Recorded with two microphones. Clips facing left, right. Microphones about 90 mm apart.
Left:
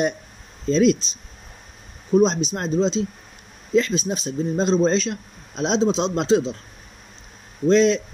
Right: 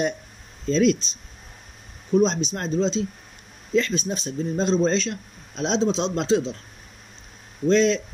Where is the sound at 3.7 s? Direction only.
15° left (ahead or behind).